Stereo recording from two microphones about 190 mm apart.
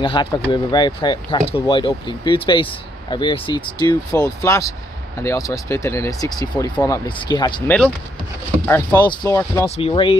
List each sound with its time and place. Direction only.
0.0 s speech: 25° left (ahead or behind)
7.6 s speech: 5° left (ahead or behind)
9.8 s speech: 30° left (ahead or behind)